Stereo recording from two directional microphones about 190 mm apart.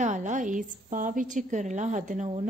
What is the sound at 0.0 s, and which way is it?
A woman's voice, 40° right (ahead or behind).